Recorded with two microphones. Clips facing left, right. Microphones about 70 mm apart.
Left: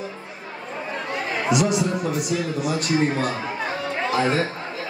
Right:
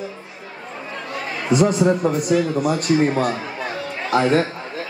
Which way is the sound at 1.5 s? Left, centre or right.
Right.